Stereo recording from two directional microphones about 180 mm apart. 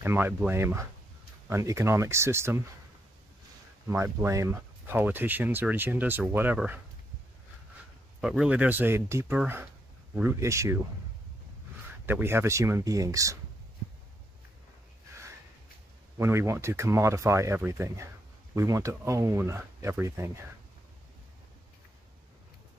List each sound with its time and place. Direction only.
0.0 s speech: 10° right (ahead or behind)
3.8 s speech: 15° right (ahead or behind)
8.2 s speech: 5° right (ahead or behind)
12.1 s speech: 15° right (ahead or behind)
16.2 s speech: 15° right (ahead or behind)